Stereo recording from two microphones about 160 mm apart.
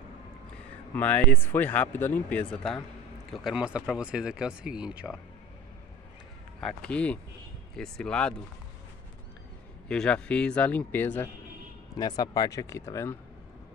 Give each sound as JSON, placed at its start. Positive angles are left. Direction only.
{"t": 0.9, "sound": "speech", "side_deg": 10}
{"t": 6.6, "sound": "speech", "side_deg": 5}
{"t": 9.8, "sound": "speech", "side_deg": 5}
{"t": 12.0, "sound": "speech", "side_deg": 25}